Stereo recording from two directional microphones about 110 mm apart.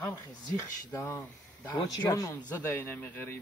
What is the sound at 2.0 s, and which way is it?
Speech, 35° left (ahead or behind).